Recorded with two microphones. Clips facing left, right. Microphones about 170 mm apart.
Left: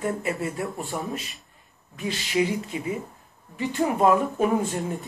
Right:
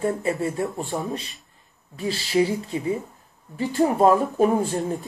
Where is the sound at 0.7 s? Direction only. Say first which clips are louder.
Right 2 dB; centre (ahead or behind).